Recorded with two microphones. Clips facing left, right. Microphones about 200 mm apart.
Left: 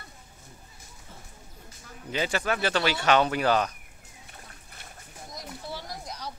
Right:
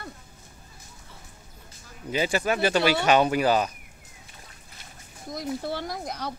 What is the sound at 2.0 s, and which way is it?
Speech, 10° right (ahead or behind).